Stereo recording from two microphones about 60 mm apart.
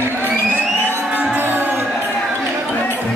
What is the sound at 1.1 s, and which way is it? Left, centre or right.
Music, right.